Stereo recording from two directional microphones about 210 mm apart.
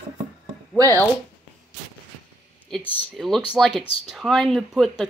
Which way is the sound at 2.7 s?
10° left (ahead or behind).